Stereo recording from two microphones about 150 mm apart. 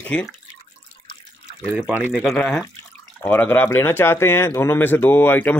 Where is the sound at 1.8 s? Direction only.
10° right (ahead or behind).